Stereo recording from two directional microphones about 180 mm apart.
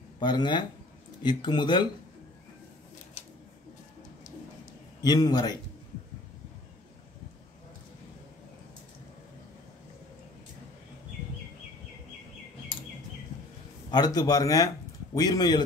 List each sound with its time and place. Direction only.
0.2 s a man's voice: 25° left (ahead or behind)
5.0 s a man's voice: 20° left (ahead or behind)
13.8 s a man's voice: 25° left (ahead or behind)